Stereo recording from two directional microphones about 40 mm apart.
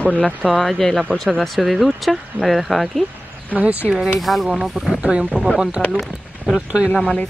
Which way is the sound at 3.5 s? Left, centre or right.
Right.